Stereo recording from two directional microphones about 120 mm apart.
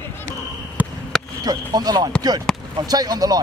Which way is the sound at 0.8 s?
15° right (ahead or behind).